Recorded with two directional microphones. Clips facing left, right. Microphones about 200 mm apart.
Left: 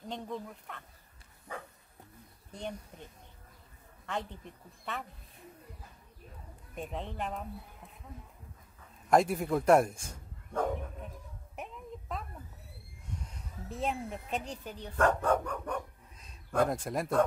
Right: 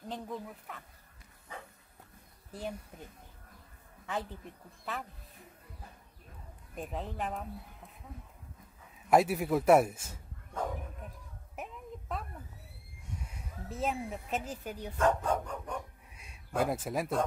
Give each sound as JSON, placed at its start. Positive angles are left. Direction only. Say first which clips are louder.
{"t": 0.0, "sound": "a man's voice", "louder": "left 1 dB", "side_deg": 0}
{"t": 2.5, "sound": "a man's voice", "louder": "right 1 dB", "side_deg": -5}
{"t": 4.0, "sound": "a woman's voice", "louder": "even", "side_deg": -5}
{"t": 6.7, "sound": "a man's voice", "louder": "even", "side_deg": 0}
{"t": 9.1, "sound": "a man's voice", "louder": "even", "side_deg": -5}
{"t": 11.5, "sound": "music", "louder": "even", "side_deg": 0}
{"t": 13.2, "sound": "speech", "louder": "even", "side_deg": -5}
{"t": 15.0, "sound": "speech", "louder": "left 2 dB", "side_deg": 60}
{"t": 16.2, "sound": "a sound", "louder": "left 3 dB", "side_deg": -5}